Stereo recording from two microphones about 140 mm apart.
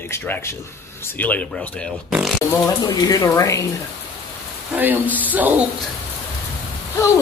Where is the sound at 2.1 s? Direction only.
Centre (ahead or behind).